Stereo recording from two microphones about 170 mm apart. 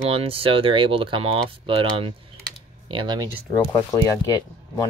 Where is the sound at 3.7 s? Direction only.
20° left (ahead or behind).